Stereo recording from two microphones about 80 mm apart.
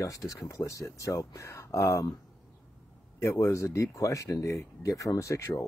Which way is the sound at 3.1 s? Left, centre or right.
Left.